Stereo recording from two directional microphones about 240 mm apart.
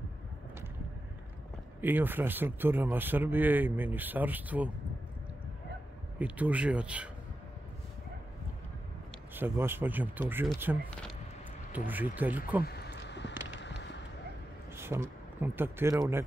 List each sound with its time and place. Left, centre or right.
1.8 s speech: centre
6.1 s speech: centre
9.3 s speech: centre
12.6 s a sound: left
13.6 s fireworks: left
14.8 s speech: centre